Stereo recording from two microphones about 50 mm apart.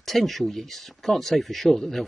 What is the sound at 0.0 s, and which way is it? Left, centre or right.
Speech, centre.